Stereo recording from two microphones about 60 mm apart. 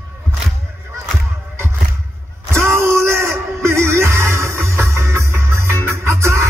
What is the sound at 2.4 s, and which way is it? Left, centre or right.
Music, right.